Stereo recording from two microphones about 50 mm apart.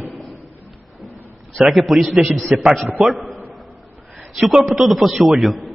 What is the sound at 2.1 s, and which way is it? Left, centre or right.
Speech, centre.